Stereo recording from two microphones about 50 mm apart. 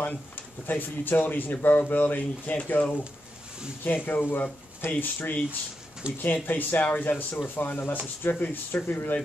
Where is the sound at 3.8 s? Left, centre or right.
Left.